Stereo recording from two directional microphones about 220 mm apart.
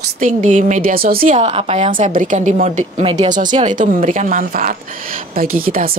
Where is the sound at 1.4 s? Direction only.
30° right (ahead or behind).